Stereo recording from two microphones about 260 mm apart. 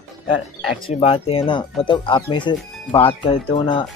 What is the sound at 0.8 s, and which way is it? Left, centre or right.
Speech, left.